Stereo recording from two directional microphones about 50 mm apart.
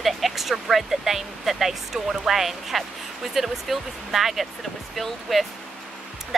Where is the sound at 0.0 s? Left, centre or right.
Centre.